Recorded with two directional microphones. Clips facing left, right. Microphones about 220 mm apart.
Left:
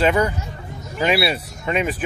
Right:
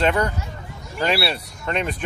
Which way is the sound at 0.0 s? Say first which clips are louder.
Left 2 dB; 5° left (ahead or behind).